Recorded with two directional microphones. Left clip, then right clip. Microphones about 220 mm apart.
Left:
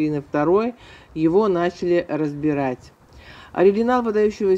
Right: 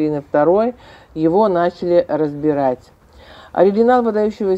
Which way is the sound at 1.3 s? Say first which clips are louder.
Right 5 dB; 25° left (ahead or behind).